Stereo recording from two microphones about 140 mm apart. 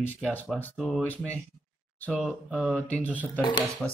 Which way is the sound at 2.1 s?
Centre (ahead or behind).